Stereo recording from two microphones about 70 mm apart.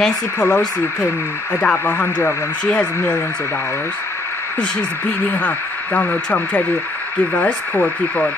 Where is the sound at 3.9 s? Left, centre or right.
Left.